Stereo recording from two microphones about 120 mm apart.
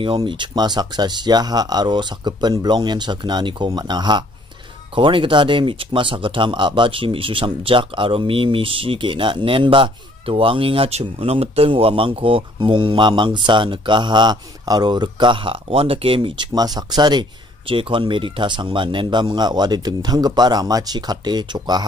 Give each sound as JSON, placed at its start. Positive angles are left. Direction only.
{"t": 0.0, "sound": "speech", "side_deg": -45}